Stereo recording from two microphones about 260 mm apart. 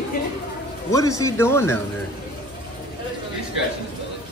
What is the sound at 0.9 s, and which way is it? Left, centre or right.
Speech, centre.